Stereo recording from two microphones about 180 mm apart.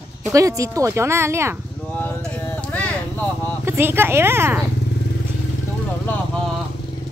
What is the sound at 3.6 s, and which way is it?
Speech, 15° right (ahead or behind).